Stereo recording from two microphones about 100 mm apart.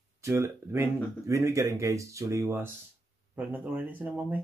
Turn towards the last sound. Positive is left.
turn(degrees=-15)  # may be behind; listen again after turning